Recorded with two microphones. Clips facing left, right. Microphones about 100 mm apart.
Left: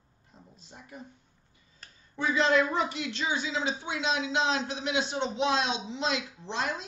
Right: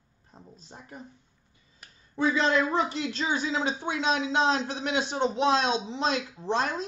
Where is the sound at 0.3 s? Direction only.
35° right (ahead or behind).